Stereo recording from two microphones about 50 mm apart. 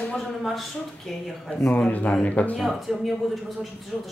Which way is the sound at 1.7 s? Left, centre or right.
Left.